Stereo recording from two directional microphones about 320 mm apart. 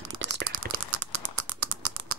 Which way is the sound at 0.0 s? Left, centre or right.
Right.